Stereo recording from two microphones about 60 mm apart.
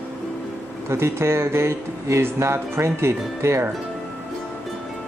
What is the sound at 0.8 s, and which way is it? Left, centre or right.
Speech, right.